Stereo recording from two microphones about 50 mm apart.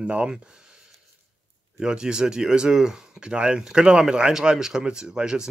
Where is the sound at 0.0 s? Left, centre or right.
Right.